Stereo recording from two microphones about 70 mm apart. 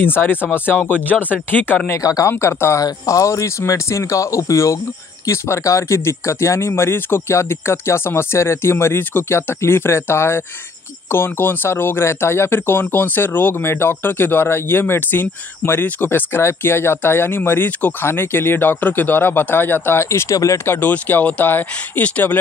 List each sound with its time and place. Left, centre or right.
0.0 s speech: left
1.9 s speech: left
2.3 s speech: left
2.8 s speech: left
20.9 s speech: left